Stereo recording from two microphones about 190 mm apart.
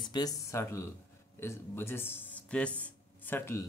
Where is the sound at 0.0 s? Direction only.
20° left (ahead or behind).